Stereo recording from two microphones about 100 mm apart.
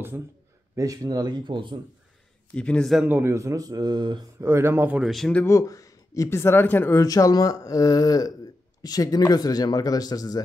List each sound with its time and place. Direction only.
0.7 s speech: 35° right (ahead or behind); by 1.8 s 50° right (ahead or behind)
2.5 s a man's voice: 10° left (ahead or behind)
3.1 s speech: 25° right (ahead or behind); by 4.3 s 45° right (ahead or behind)
4.4 s speech: 25° right (ahead or behind)
5.0 s speech: centre (ahead or behind)
5.5 s speech: 35° left (ahead or behind)
7.0 s speech: 35° left (ahead or behind)